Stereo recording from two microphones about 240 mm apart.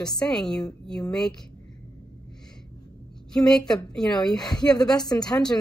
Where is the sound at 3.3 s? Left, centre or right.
Centre.